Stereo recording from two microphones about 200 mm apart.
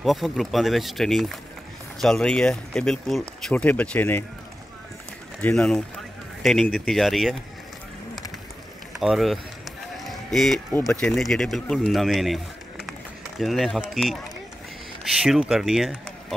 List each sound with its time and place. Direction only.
0.0 s speech: centre (ahead or behind)
5.4 s speech: 5° left (ahead or behind)
9.0 s speech: centre (ahead or behind)
15.2 s speech: centre (ahead or behind)